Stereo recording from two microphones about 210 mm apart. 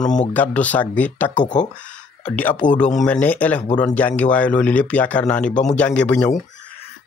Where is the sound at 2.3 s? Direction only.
5° left (ahead or behind).